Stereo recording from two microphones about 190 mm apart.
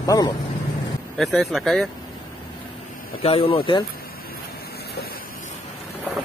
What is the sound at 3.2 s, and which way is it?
Speech, 30° left (ahead or behind).